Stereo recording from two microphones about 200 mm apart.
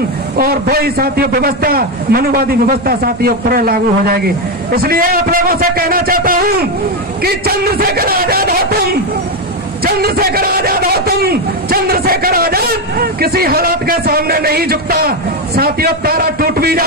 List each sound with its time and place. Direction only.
0.4 s a man's voice: 50° right (ahead or behind)
9.8 s a man's voice: 50° right (ahead or behind)